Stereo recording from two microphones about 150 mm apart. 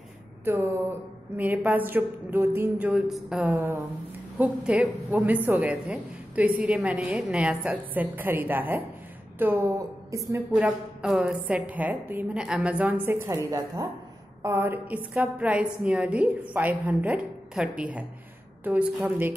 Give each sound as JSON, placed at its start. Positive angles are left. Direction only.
{"t": 0.5, "sound": "a woman's voice", "side_deg": -15}
{"t": 3.1, "sound": "a woman's voice", "side_deg": 0}
{"t": 3.5, "sound": "a woman's voice", "side_deg": -15}
{"t": 10.5, "sound": "a woman's voice", "side_deg": -5}